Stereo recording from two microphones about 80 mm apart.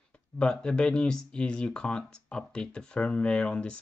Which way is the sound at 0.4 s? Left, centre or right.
Centre.